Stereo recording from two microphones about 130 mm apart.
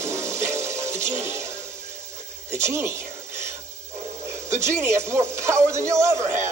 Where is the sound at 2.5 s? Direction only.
20° right (ahead or behind).